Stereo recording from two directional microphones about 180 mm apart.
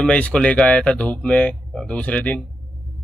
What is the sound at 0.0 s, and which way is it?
Speech, 5° left (ahead or behind).